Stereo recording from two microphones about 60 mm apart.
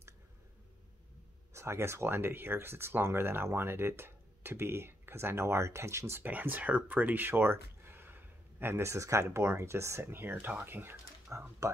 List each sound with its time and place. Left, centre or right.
1.5 s speech: right
6.2 s speech: right
10.2 s speech: right
11.3 s speech: right